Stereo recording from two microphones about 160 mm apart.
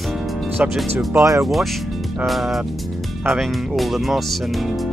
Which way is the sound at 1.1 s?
20° right (ahead or behind).